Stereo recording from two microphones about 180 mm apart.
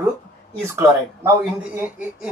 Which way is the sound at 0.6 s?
15° right (ahead or behind).